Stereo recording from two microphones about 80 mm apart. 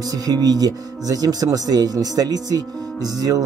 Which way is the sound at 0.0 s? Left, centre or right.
Right.